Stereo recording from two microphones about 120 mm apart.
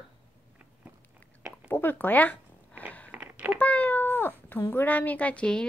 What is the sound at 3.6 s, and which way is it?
Speech, 15° left (ahead or behind).